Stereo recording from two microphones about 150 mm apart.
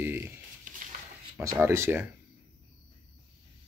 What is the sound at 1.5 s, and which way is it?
Speech, 15° right (ahead or behind).